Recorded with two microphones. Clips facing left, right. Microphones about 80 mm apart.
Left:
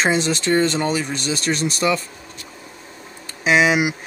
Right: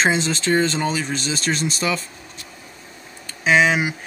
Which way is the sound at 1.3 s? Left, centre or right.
Left.